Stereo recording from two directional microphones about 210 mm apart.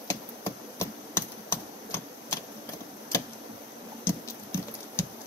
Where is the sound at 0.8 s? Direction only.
10° left (ahead or behind).